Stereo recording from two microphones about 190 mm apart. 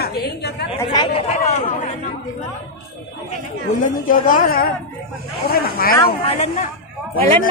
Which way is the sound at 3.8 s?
45° left (ahead or behind).